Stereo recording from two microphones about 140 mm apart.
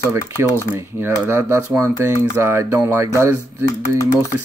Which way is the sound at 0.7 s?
15° right (ahead or behind).